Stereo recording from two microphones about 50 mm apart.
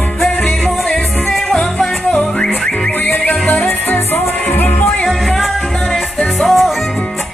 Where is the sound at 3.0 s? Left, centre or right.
Left.